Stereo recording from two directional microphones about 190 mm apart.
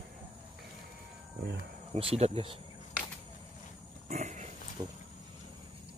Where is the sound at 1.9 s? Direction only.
30° right (ahead or behind).